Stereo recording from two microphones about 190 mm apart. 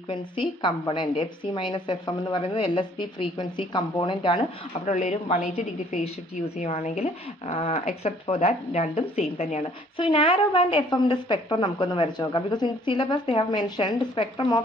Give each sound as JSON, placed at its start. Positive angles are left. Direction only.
{"t": 0.1, "sound": "speech", "side_deg": 25}